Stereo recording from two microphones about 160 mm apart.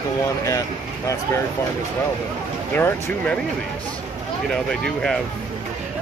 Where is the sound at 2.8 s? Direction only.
15° left (ahead or behind).